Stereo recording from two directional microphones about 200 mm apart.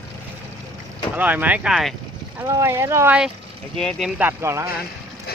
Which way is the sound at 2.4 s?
15° right (ahead or behind).